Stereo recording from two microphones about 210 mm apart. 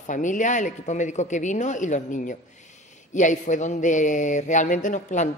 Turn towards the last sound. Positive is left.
turn(degrees=35)  # may be behind; listen again after turning